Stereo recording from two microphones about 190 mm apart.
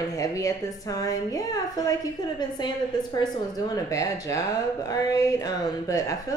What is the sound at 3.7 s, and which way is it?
Speech, 15° left (ahead or behind).